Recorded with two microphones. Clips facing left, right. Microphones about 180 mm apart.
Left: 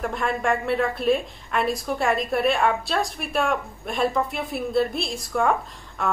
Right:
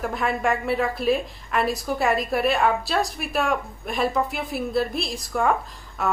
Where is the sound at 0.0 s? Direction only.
Centre (ahead or behind).